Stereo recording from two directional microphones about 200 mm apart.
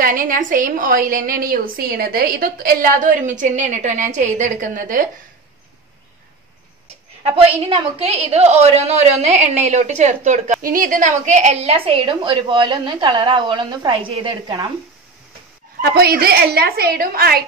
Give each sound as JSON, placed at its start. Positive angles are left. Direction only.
{"t": 0.0, "sound": "a woman's voice", "side_deg": -40}
{"t": 7.2, "sound": "a woman's voice", "side_deg": -30}
{"t": 15.8, "sound": "a woman's voice", "side_deg": -50}